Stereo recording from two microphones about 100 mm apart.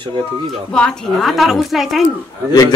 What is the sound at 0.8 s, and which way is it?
A woman's voice, 5° left (ahead or behind).